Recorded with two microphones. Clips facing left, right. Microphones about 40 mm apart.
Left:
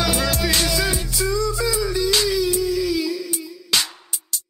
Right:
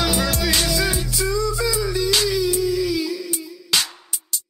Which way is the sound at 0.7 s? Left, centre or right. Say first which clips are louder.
Even; centre.